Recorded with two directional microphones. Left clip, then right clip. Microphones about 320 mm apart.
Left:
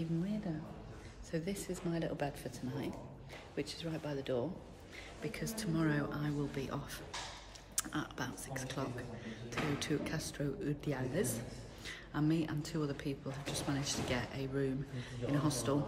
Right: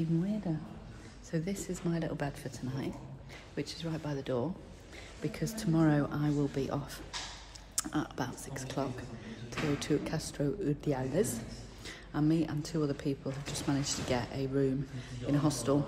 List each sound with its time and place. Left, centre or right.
1.3 s a woman's voice: centre